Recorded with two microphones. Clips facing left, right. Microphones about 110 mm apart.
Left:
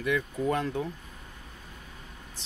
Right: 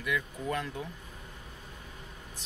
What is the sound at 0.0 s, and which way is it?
Speech, 35° left (ahead or behind).